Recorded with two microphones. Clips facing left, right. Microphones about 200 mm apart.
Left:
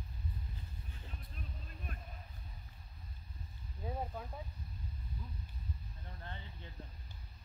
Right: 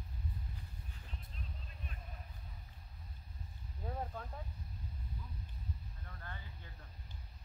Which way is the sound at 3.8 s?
10° left (ahead or behind).